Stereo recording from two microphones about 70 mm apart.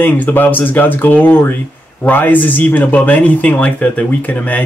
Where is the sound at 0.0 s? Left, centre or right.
Left.